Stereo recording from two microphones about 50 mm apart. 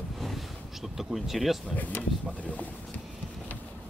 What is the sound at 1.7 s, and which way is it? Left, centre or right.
Speech, left.